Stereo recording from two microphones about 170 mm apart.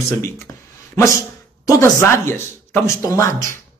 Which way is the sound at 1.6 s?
15° left (ahead or behind).